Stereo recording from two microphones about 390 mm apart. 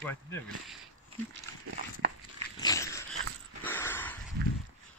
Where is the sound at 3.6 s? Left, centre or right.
Centre.